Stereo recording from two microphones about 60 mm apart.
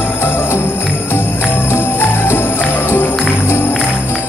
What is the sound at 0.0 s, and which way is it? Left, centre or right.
Jingle bell, left.